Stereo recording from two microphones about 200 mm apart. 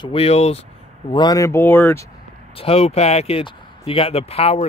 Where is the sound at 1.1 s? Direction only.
20° left (ahead or behind).